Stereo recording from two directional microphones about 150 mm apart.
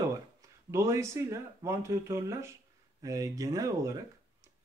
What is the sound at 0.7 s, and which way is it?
Speech, 20° right (ahead or behind).